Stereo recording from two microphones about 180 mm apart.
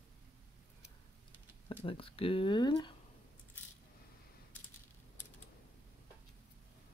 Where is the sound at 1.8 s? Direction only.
30° left (ahead or behind).